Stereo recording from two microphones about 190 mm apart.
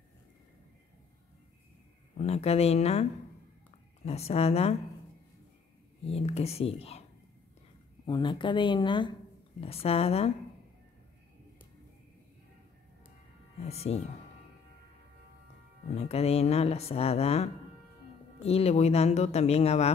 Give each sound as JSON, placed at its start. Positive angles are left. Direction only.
{"t": 2.1, "sound": "speech", "side_deg": 35}
{"t": 6.0, "sound": "speech", "side_deg": 30}
{"t": 8.1, "sound": "speech", "side_deg": 25}
{"t": 13.7, "sound": "speech", "side_deg": 35}
{"t": 15.9, "sound": "speech", "side_deg": 35}